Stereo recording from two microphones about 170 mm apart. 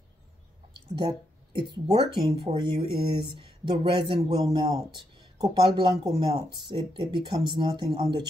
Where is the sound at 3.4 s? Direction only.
30° right (ahead or behind).